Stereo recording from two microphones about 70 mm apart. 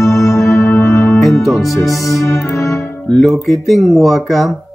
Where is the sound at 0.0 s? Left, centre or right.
Left.